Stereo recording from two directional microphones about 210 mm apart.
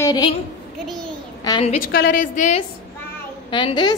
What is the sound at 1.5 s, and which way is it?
Speech, 20° left (ahead or behind).